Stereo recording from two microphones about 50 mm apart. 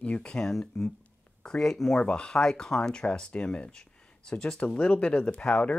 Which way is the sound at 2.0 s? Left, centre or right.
Centre.